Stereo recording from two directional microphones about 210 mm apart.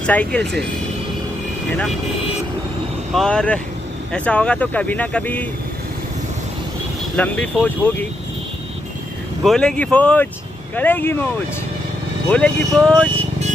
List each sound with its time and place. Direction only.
0.0 s speech: 5° left (ahead or behind)
3.1 s speech: centre (ahead or behind)
7.2 s speech: 5° left (ahead or behind)
9.4 s speech: centre (ahead or behind)